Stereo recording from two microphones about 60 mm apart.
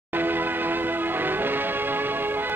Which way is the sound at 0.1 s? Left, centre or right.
Right.